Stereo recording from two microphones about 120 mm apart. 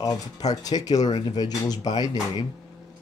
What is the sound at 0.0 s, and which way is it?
Speech, 30° left (ahead or behind).